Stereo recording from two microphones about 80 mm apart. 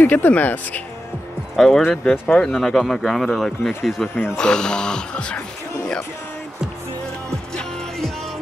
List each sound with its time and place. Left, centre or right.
0.0 s speech: left
1.6 s speech: centre
4.1 s speech: left
4.4 s music: centre